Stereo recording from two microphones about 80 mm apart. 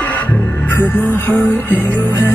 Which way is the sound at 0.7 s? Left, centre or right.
Left.